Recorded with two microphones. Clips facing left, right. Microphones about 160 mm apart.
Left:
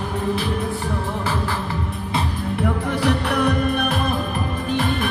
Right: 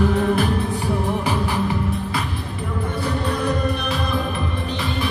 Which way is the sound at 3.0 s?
70° left (ahead or behind).